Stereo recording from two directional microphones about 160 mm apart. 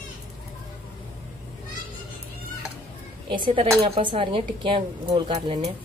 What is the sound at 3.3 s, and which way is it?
Speech, 30° right (ahead or behind).